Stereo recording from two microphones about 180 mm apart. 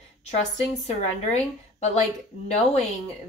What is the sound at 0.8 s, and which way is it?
A woman's voice, 40° left (ahead or behind).